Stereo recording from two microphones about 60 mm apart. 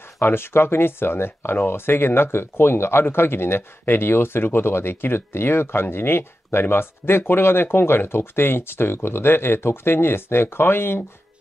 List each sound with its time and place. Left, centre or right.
0.2 s speech: left